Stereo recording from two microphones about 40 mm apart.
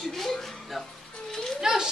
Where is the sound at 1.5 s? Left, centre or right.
Centre.